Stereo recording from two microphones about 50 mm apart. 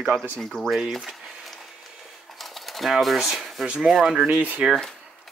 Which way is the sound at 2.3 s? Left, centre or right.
Centre.